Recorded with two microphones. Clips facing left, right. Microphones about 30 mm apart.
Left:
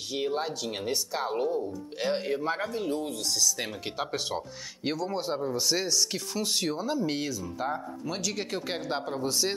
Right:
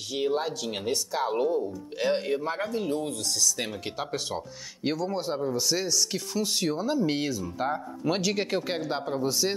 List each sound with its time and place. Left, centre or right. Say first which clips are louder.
0.2 s speech: right 3 dB; centre